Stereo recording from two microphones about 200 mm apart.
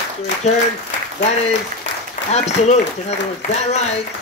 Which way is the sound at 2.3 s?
35° left (ahead or behind).